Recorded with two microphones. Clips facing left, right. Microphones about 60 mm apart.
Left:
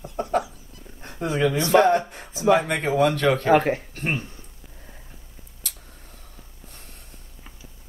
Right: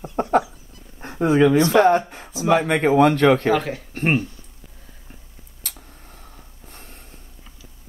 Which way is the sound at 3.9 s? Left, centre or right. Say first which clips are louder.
Right 7 dB; right.